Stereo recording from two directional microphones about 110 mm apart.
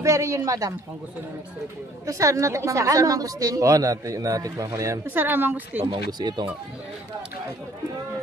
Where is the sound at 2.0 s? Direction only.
30° right (ahead or behind).